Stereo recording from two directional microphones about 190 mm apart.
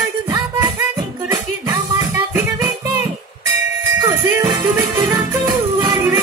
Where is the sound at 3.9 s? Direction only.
20° right (ahead or behind).